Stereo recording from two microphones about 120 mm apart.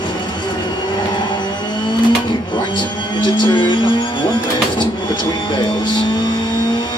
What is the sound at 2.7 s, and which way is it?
Music, 40° left (ahead or behind).